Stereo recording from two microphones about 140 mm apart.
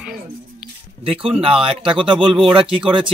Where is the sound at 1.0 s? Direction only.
40° right (ahead or behind).